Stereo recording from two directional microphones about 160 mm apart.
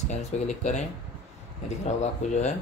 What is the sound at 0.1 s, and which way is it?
Speech, 45° left (ahead or behind).